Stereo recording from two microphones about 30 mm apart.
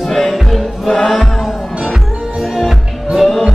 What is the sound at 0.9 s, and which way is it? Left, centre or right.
Music, centre.